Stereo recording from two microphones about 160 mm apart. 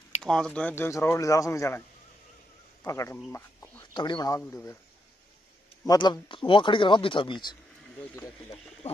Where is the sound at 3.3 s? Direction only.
15° left (ahead or behind).